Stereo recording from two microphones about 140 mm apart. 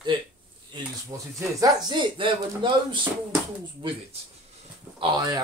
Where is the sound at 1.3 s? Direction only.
30° right (ahead or behind).